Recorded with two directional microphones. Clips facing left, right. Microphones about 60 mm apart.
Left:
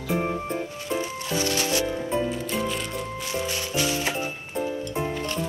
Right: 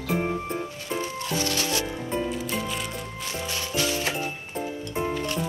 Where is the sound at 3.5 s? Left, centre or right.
Left.